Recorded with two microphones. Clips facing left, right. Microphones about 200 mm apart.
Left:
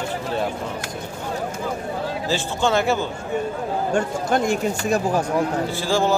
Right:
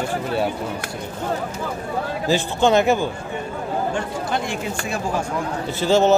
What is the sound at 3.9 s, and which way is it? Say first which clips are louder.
Speech: left 4 dB; 45° left (ahead or behind).